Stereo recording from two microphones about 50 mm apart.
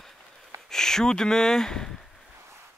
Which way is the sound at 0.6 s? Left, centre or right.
Centre.